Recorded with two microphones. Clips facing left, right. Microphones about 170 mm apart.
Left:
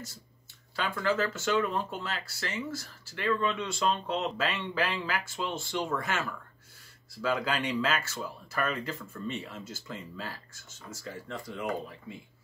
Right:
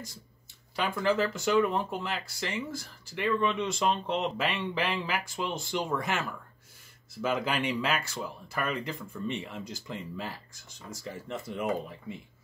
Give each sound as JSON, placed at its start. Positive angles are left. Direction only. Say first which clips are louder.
{"t": 0.7, "sound": "speech", "louder": "right 2 dB", "side_deg": -20}